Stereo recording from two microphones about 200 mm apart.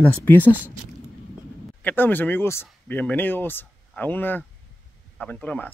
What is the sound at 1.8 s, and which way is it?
Speech, 10° left (ahead or behind).